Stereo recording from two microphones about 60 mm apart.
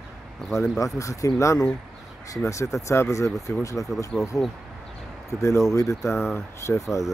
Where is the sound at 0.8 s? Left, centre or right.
Left.